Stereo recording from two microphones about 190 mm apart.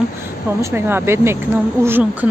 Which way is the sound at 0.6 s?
15° right (ahead or behind).